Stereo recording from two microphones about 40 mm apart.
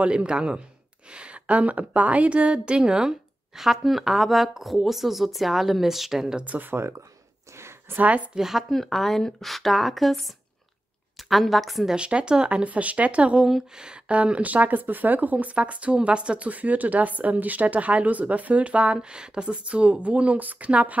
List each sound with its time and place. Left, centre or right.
0.0 s speech: right
3.7 s speech: centre
6.6 s speech: right
8.4 s a woman's voice: centre
8.6 s speech: centre
11.9 s speech: right
12.6 s speech: right
13.5 s speech: centre
14.0 s speech: right
18.9 s speech: right